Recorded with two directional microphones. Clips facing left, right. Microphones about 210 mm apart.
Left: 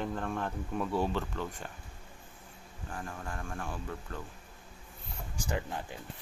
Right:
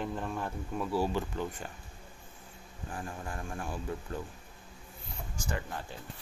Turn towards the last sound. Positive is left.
turn(degrees=15)  # may be behind; listen again after turning